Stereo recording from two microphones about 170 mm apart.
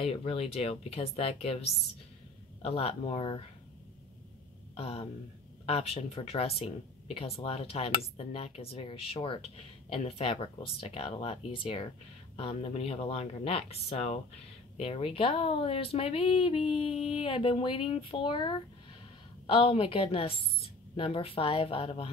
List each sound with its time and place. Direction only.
0.0 s speech: 35° left (ahead or behind)
4.7 s speech: 35° left (ahead or behind)